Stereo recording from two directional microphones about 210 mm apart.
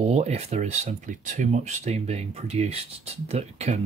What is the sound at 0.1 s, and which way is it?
Speech, 30° right (ahead or behind).